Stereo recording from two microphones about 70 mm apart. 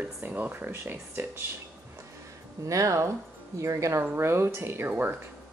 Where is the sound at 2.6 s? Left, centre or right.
Right.